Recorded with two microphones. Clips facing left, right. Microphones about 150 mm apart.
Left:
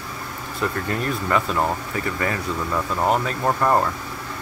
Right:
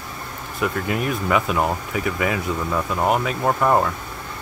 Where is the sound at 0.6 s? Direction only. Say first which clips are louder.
Right 2 dB; 10° right (ahead or behind).